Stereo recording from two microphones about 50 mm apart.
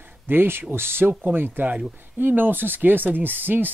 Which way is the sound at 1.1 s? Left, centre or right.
Right.